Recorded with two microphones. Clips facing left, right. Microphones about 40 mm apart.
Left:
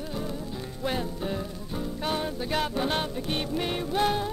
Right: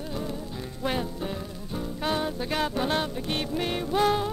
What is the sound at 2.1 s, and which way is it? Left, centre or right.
Music, centre.